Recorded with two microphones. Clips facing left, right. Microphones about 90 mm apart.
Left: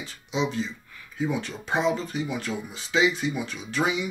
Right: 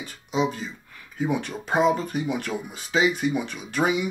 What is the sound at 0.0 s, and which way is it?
Speech, 45° right (ahead or behind).